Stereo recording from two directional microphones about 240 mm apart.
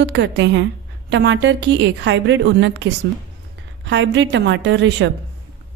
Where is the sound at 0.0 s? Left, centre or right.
Right.